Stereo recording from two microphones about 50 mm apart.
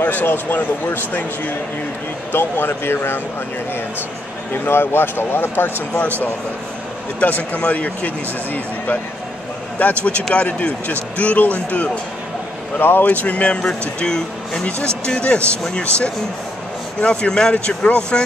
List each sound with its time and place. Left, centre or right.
0.0 s a man's voice: left
4.6 s speech: left
7.2 s speech: left
9.8 s a man's voice: left
12.7 s speech: left
13.0 s speech: left
17.0 s speech: centre